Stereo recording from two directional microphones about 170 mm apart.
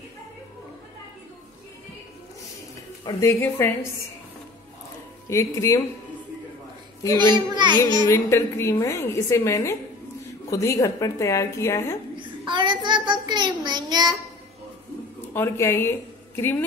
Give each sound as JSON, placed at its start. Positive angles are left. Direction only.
{"t": 3.1, "sound": "a woman's voice", "side_deg": 20}
{"t": 5.3, "sound": "a woman's voice", "side_deg": 20}
{"t": 7.5, "sound": "a child's voice", "side_deg": -25}
{"t": 8.1, "sound": "a woman's voice", "side_deg": 15}
{"t": 12.2, "sound": "child singing", "side_deg": -30}
{"t": 15.3, "sound": "a woman's voice", "side_deg": 15}